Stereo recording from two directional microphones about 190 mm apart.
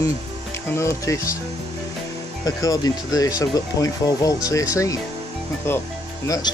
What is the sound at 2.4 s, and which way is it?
Speech, 20° left (ahead or behind).